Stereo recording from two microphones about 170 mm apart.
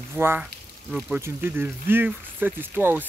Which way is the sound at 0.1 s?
15° right (ahead or behind).